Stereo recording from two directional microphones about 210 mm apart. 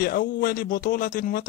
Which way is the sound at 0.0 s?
45° left (ahead or behind).